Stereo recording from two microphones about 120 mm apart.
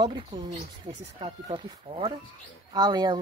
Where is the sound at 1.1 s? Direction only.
50° right (ahead or behind).